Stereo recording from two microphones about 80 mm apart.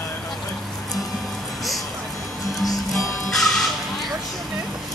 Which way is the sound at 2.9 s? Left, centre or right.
Centre.